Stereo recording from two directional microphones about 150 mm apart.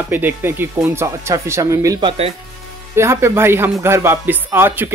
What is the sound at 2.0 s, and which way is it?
Speech, 40° right (ahead or behind).